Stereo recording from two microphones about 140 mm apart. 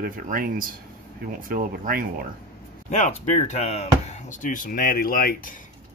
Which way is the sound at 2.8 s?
60° left (ahead or behind).